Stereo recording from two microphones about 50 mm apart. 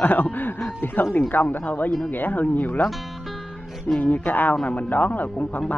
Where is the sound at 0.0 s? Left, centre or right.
Left.